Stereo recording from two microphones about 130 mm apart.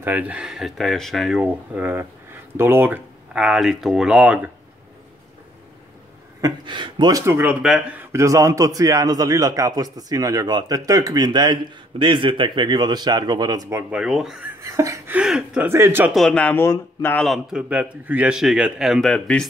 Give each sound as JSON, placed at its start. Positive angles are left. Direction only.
{"t": 0.0, "sound": "a man's voice", "side_deg": -10}
{"t": 6.4, "sound": "speech", "side_deg": -40}
{"t": 7.3, "sound": "a man's voice", "side_deg": -10}
{"t": 13.8, "sound": "a man's voice", "side_deg": -5}
{"t": 14.6, "sound": "a sound", "side_deg": -25}
{"t": 15.1, "sound": "speech", "side_deg": -5}
{"t": 15.7, "sound": "speech", "side_deg": -20}
{"t": 16.1, "sound": "speech", "side_deg": 5}
{"t": 17.2, "sound": "a man's voice", "side_deg": 0}